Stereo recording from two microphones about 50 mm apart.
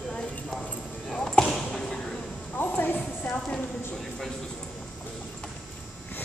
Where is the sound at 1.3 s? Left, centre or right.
Centre.